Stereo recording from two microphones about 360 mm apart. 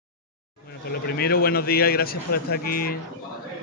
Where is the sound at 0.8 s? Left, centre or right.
Left.